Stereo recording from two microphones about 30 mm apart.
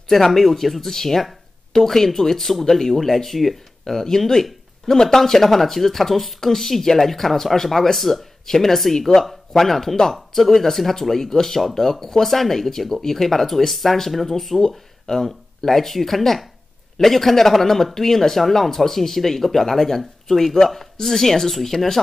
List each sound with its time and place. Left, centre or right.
0.1 s speech: centre
21.7 s speech: centre